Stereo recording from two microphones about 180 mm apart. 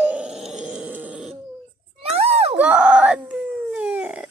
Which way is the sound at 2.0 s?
35° right (ahead or behind).